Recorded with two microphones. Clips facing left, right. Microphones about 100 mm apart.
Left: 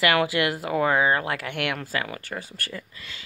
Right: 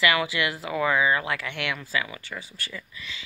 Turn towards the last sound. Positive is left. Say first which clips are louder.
# left 1 dB
turn(degrees=50)  # may be behind; listen again after turning